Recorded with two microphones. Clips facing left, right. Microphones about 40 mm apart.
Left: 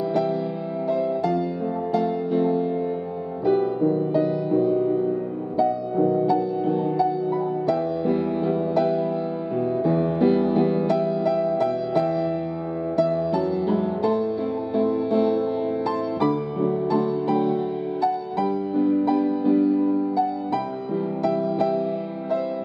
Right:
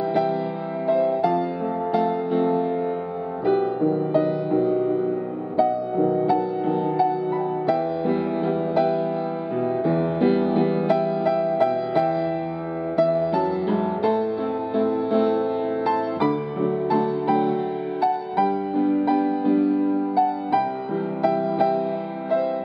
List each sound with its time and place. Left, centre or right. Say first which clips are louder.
0.1 s music: right 1 dB; centre